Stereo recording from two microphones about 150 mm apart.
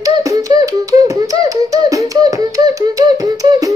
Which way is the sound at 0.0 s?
20° right (ahead or behind).